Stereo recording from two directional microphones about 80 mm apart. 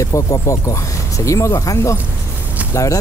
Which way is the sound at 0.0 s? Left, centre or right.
Left.